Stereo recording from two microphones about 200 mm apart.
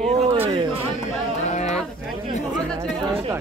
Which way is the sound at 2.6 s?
5° left (ahead or behind).